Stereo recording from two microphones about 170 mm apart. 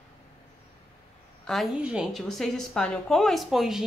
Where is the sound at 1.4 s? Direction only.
Centre (ahead or behind).